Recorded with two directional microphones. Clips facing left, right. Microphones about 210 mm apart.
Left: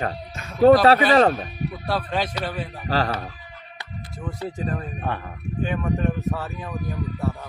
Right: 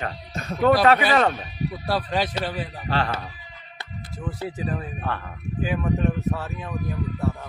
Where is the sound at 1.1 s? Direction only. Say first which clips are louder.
Left 4 dB; 40° left (ahead or behind).